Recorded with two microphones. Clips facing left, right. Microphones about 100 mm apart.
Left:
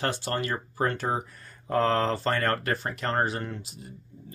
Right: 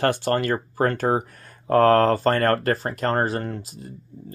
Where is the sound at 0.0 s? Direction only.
55° right (ahead or behind).